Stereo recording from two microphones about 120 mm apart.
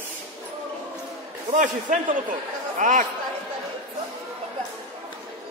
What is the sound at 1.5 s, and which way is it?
Speech, 90° right.